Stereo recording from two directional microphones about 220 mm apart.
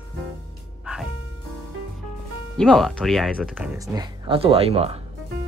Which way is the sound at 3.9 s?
25° right (ahead or behind).